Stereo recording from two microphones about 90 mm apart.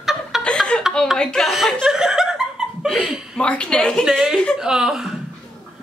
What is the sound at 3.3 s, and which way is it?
Speech, 10° left (ahead or behind).